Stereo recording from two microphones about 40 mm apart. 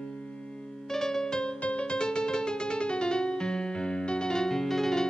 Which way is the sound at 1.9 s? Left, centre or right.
Centre.